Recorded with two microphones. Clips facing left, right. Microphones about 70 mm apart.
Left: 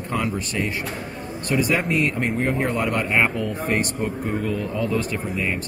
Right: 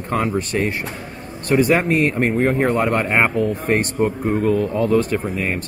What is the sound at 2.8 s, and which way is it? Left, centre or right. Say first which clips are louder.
Speech: right 3 dB; right.